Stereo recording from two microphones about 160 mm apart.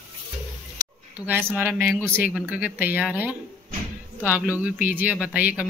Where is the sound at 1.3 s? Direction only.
10° right (ahead or behind).